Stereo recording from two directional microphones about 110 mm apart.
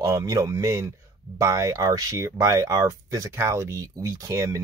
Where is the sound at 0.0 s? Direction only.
30° right (ahead or behind).